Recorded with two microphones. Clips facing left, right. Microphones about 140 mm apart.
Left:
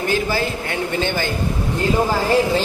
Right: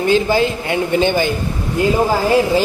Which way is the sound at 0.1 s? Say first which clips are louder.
Right 7 dB; 20° right (ahead or behind).